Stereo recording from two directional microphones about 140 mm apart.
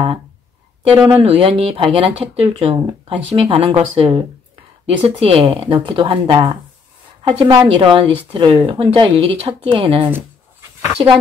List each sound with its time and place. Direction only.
0.8 s speech: 40° right (ahead or behind)